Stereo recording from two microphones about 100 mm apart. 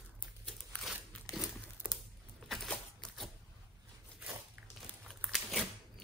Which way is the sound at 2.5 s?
5° left (ahead or behind).